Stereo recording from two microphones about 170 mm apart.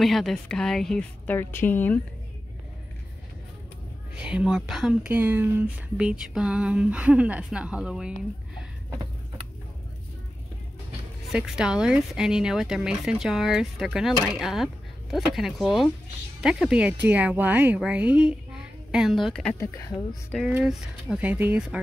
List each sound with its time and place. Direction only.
0.0 s speech: centre (ahead or behind)
4.1 s speech: 5° right (ahead or behind)
11.3 s speech: 5° right (ahead or behind)
19.6 s speech: 15° left (ahead or behind)
20.3 s speech: 5° right (ahead or behind)